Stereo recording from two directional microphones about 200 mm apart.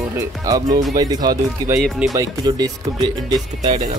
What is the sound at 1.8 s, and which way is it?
Speech, centre (ahead or behind).